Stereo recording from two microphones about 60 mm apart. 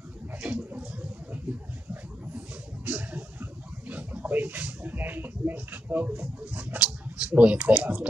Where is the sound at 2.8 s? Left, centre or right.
Right.